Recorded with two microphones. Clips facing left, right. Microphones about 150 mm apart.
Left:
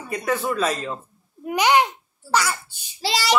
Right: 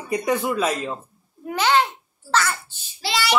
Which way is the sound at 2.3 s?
15° left (ahead or behind).